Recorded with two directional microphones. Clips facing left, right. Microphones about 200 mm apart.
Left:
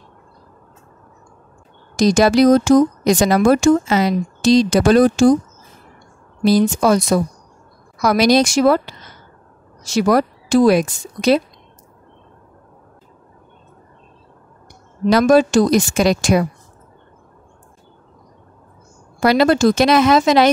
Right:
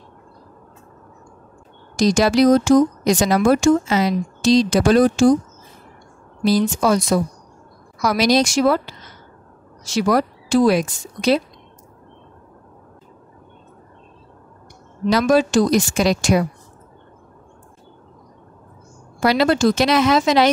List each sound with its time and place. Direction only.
2.0 s speech: 50° left (ahead or behind)
6.4 s speech: 55° left (ahead or behind)
9.8 s speech: 50° left (ahead or behind)
15.0 s speech: 55° left (ahead or behind)
19.2 s speech: 50° left (ahead or behind)